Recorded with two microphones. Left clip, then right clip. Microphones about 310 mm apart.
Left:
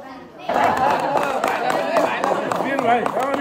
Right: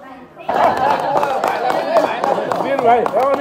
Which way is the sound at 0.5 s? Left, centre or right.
Right.